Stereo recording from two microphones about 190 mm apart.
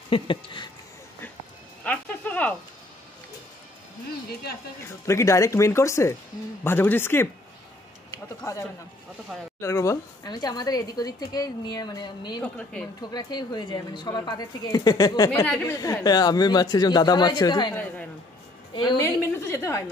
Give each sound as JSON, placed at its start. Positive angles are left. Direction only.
{"t": 0.1, "sound": "speech", "side_deg": 25}
{"t": 1.9, "sound": "a sound", "side_deg": 10}
{"t": 5.0, "sound": "speech", "side_deg": 15}
{"t": 9.6, "sound": "speech", "side_deg": 15}
{"t": 18.8, "sound": "speech", "side_deg": 20}